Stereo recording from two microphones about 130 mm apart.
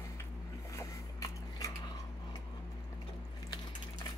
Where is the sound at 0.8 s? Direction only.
25° left (ahead or behind).